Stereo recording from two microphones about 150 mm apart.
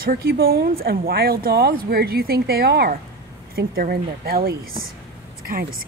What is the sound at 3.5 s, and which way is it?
Speech, 80° right.